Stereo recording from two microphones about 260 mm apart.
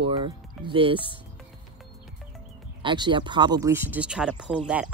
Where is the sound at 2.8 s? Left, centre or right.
Centre.